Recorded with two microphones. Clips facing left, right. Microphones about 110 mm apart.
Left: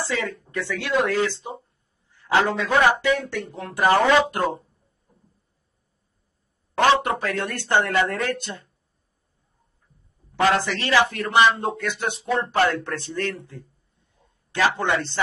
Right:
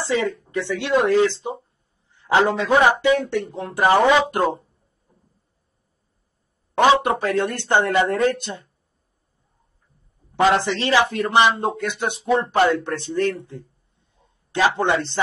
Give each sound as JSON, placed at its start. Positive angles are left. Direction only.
{"t": 0.0, "sound": "a man's voice", "side_deg": -20}
{"t": 6.7, "sound": "a man's voice", "side_deg": -20}
{"t": 10.3, "sound": "a man's voice", "side_deg": -25}